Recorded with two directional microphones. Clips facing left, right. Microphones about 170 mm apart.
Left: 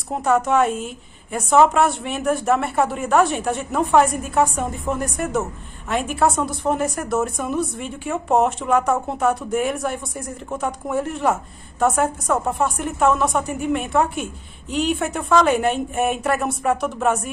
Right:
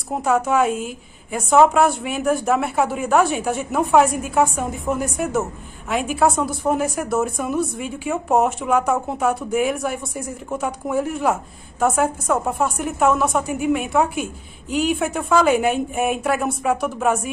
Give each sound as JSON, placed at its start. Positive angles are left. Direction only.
{"t": 0.1, "sound": "a woman's voice", "side_deg": 0}